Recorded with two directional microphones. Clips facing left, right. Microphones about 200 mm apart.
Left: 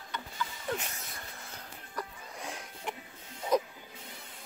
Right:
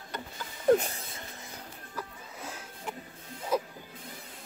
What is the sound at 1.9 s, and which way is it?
Music, 5° right (ahead or behind).